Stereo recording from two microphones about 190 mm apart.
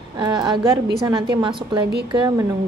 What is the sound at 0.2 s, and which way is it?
A woman's voice, 20° right (ahead or behind).